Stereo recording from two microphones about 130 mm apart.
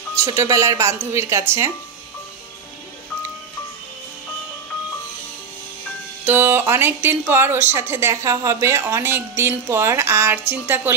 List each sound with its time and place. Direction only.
0.2 s speech: 25° right (ahead or behind)
6.2 s speech: 15° right (ahead or behind)